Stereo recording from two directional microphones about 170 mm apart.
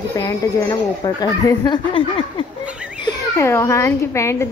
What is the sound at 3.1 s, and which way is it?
A child's voice, 15° left (ahead or behind).